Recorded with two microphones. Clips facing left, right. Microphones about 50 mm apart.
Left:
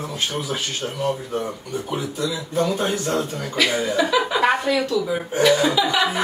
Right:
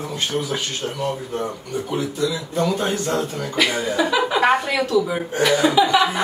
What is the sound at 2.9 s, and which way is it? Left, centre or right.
Speech, centre.